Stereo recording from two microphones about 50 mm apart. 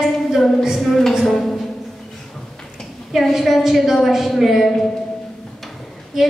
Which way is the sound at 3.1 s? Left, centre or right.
Centre.